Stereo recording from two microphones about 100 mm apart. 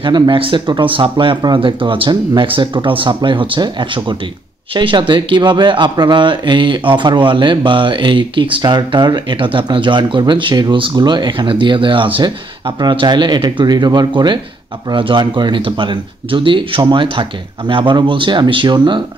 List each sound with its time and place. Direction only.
0.0 s speech: 55° right (ahead or behind)